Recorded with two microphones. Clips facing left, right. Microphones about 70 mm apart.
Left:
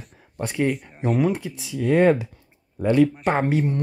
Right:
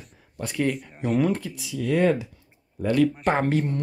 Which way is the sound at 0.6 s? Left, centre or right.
Centre.